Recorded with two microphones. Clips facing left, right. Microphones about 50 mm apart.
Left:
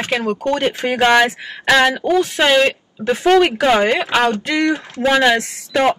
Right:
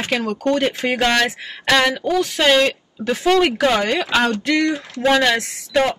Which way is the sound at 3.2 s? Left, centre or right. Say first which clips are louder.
Left 3 dB; left.